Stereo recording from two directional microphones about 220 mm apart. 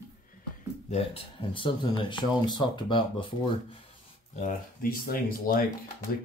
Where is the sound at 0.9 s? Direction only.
25° left (ahead or behind).